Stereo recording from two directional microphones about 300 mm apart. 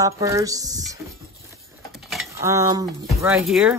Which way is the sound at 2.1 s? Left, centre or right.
Centre.